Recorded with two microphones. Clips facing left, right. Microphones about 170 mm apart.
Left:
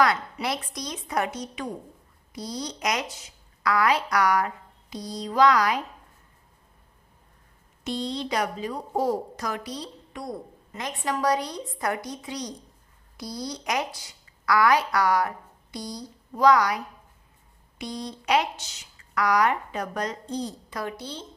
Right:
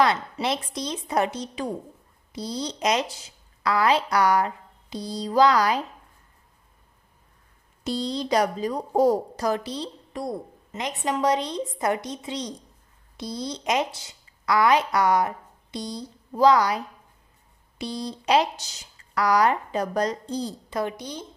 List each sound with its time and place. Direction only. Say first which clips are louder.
0.0 s a woman's voice: right 1 dB; 25° right (ahead or behind)
7.8 s a woman's voice: right 2 dB; 35° right (ahead or behind); by 21.3 s 15° right (ahead or behind)